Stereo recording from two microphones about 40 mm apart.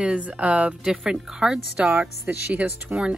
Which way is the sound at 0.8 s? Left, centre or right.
Centre.